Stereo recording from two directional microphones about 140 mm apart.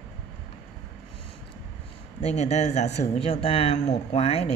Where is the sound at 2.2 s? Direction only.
50° left (ahead or behind).